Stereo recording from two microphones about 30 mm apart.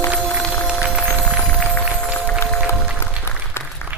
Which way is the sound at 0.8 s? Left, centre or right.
Right.